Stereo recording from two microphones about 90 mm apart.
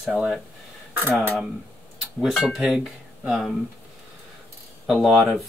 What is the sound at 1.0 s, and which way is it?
Speech, 15° left (ahead or behind).